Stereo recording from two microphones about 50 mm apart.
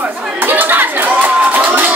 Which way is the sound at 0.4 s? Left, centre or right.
Right.